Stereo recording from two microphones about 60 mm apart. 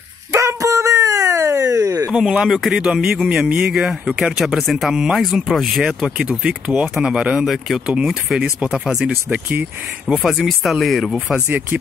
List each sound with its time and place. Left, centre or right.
0.3 s dog: right
2.1 s speech: centre
6.4 s speech: right
10.0 s speech: centre